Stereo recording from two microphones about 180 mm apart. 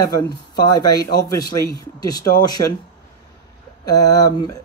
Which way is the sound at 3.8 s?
20° left (ahead or behind).